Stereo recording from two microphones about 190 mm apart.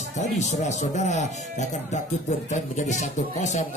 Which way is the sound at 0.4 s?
40° left (ahead or behind).